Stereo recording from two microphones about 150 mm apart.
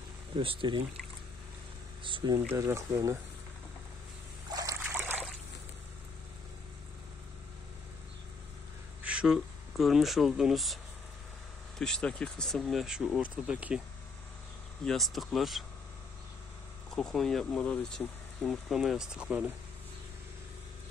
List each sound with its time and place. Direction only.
0.4 s speech: 35° right (ahead or behind)
2.0 s speech: 35° right (ahead or behind)
2.5 s speech: 20° right (ahead or behind)
4.5 s trickle: 25° right (ahead or behind)
4.9 s trickle: 10° right (ahead or behind)
9.0 s speech: 5° right (ahead or behind)
11.8 s speech: 5° left (ahead or behind)
14.9 s speech: centre (ahead or behind)
16.9 s speech: centre (ahead or behind)